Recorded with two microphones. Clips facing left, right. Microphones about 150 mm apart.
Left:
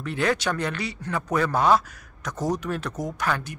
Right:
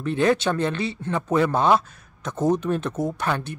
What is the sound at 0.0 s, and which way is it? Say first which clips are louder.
Speech: right 4 dB; 25° right (ahead or behind).